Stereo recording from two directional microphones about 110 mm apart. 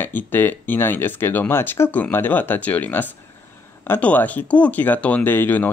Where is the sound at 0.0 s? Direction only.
20° left (ahead or behind).